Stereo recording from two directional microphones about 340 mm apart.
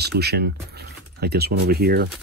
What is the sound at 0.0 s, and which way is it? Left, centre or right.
Speech, right.